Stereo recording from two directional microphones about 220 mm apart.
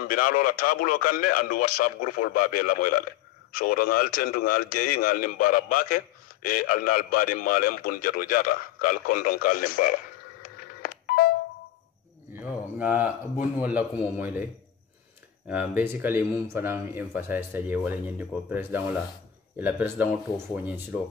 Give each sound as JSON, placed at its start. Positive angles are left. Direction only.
{"t": 0.1, "sound": "speech", "side_deg": 40}
{"t": 10.4, "sound": "telephone dialing", "side_deg": 40}
{"t": 13.6, "sound": "speech", "side_deg": -5}
{"t": 15.4, "sound": "speech", "side_deg": -5}